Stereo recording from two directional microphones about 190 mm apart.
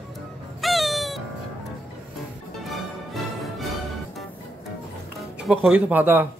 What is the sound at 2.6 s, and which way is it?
Music, centre (ahead or behind).